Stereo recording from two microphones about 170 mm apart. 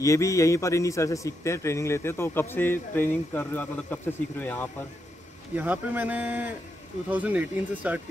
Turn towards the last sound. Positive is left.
turn(degrees=-10)  # may be behind; listen again after turning